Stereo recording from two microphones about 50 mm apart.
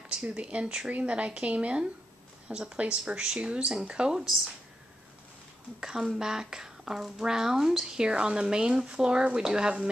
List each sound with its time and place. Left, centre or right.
0.1 s a sound: centre
0.4 s speech: right
5.8 s speech: centre